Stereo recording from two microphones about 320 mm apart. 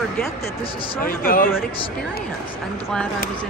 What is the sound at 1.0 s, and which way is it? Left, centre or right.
Speech, left.